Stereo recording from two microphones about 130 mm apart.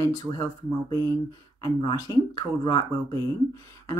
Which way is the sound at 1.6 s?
40° left (ahead or behind).